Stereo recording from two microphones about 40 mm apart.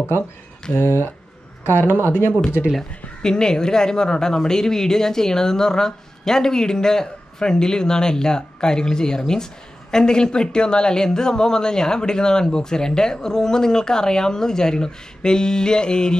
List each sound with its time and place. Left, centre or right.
0.8 s speech: left
2.0 s speech: left
3.2 s speech: centre